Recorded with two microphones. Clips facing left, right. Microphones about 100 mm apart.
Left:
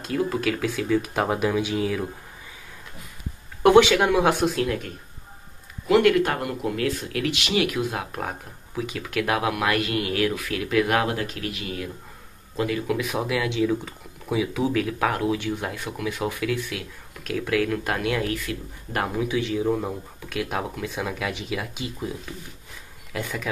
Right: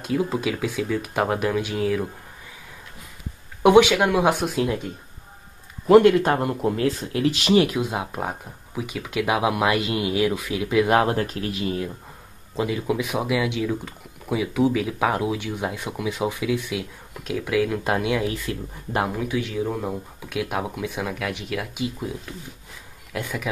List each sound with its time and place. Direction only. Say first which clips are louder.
0.0 s speech: right 1 dB; 5° right (ahead or behind)
3.6 s speech: right 1 dB; 5° right (ahead or behind)
4.6 s speech: right 2 dB; 20° right (ahead or behind)
6.0 s speech: right 3 dB; 25° right (ahead or behind)
7.7 s speech: right 1 dB; 20° right (ahead or behind)
10.9 s speech: right 4 dB; 30° right (ahead or behind)
12.5 s speech: right 1 dB; 15° right (ahead or behind)
18.3 s speech: even; 25° right (ahead or behind)
19.0 s speech: left 1 dB; centre (ahead or behind)
20.2 s speech: right 1 dB; 10° right (ahead or behind)
23.1 s speech: right 1 dB; 5° right (ahead or behind)